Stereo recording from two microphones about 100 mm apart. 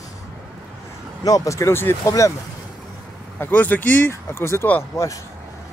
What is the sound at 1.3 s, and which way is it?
Speech, 30° left (ahead or behind).